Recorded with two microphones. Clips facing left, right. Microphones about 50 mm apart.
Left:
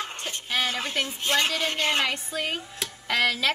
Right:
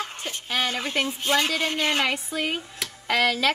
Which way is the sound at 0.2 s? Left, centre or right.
Centre.